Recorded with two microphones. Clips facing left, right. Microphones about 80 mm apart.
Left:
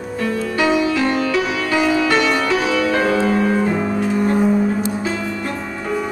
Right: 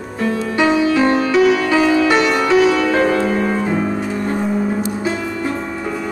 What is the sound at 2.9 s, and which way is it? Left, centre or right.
Music, centre.